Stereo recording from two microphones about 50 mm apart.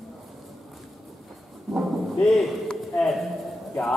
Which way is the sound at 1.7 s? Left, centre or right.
Centre.